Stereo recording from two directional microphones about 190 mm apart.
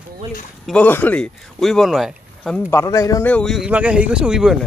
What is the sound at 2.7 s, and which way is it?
Speech, 15° left (ahead or behind).